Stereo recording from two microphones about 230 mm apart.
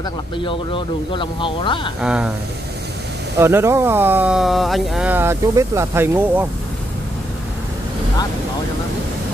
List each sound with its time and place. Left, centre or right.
0.4 s speech: left
2.0 s speech: centre
3.3 s speech: centre